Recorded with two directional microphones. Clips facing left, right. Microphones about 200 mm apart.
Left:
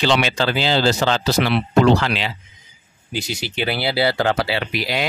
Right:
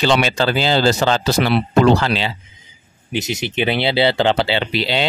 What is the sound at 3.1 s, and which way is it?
Speech, 20° right (ahead or behind).